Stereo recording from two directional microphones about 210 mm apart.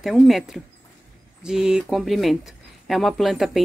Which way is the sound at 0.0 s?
Centre (ahead or behind).